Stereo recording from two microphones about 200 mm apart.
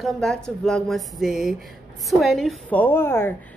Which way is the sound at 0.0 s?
Centre (ahead or behind).